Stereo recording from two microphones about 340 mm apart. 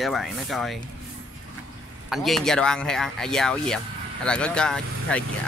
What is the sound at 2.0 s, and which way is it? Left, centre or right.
Speech, centre.